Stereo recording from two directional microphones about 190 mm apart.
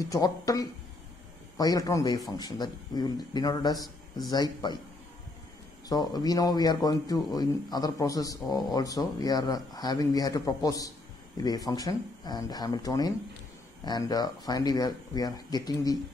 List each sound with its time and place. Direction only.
0.1 s a man's voice: 20° left (ahead or behind)
5.9 s a man's voice: 20° left (ahead or behind)